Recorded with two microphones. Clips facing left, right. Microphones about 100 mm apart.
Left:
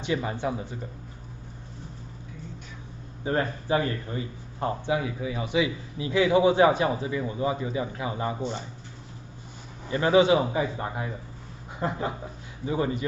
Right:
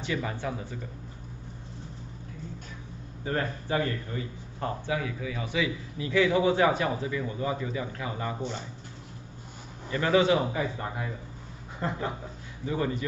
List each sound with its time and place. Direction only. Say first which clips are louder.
0.0 s a man's voice: left 4 dB; 20° left (ahead or behind)
3.3 s a man's voice: left 4 dB; 20° left (ahead or behind)
9.8 s a man's voice: left 3 dB; 20° left (ahead or behind)